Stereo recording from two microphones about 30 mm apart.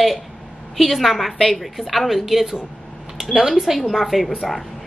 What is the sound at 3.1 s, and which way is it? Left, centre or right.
Speech, right.